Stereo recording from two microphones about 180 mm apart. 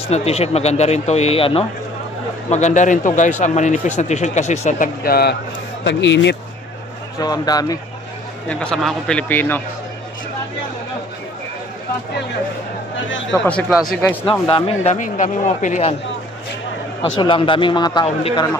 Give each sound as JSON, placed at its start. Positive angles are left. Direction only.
{"t": 0.1, "sound": "speech", "side_deg": 35}
{"t": 2.5, "sound": "speech", "side_deg": 40}
{"t": 5.9, "sound": "speech", "side_deg": 80}
{"t": 7.2, "sound": "speech", "side_deg": 20}
{"t": 8.5, "sound": "a man's voice", "side_deg": 5}
{"t": 13.3, "sound": "a man's voice", "side_deg": 5}
{"t": 14.5, "sound": "speech", "side_deg": 35}
{"t": 17.2, "sound": "speech", "side_deg": 30}